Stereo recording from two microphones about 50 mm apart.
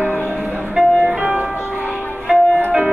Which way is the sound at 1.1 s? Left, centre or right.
Centre.